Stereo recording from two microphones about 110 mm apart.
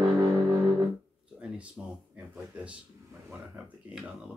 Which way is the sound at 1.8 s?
5° right (ahead or behind).